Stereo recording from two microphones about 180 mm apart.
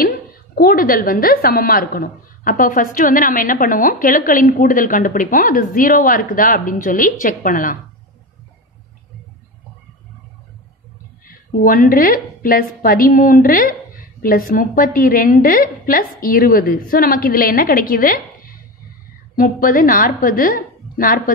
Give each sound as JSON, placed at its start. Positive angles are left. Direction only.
{"t": 0.0, "sound": "a woman's voice", "side_deg": 55}
{"t": 11.2, "sound": "a woman's voice", "side_deg": 50}